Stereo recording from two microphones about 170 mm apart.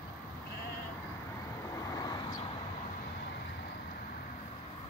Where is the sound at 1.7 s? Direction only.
20° left (ahead or behind).